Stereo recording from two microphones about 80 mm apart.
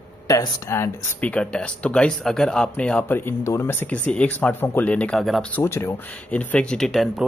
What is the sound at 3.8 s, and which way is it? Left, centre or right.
Speech, centre.